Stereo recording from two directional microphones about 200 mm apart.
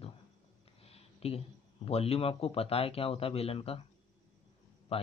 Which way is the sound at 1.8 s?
30° left (ahead or behind).